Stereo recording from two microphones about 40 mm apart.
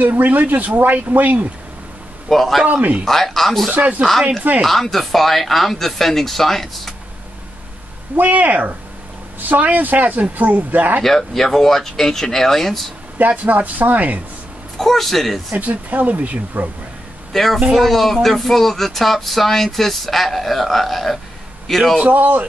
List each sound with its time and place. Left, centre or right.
0.0 s speech: right
2.2 s speech: centre
2.7 s speech: right
3.1 s speech: centre
3.7 s speech: right
4.6 s speech: centre
8.2 s speech: right
11.1 s speech: centre
13.2 s speech: right
14.8 s speech: centre
15.5 s speech: right
17.3 s a man's voice: centre
22.0 s speech: right